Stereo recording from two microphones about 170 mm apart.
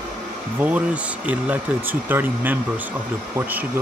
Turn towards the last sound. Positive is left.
turn(degrees=-10)  # may be behind; listen again after turning